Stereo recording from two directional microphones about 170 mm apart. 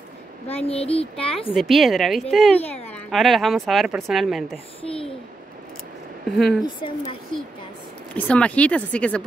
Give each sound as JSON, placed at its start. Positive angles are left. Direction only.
{"t": 0.7, "sound": "a child's voice", "side_deg": 35}
{"t": 1.5, "sound": "speech", "side_deg": 0}
{"t": 4.8, "sound": "a child's voice", "side_deg": 35}
{"t": 6.3, "sound": "speech", "side_deg": 0}
{"t": 6.6, "sound": "a woman's voice", "side_deg": 30}
{"t": 8.1, "sound": "speech", "side_deg": 10}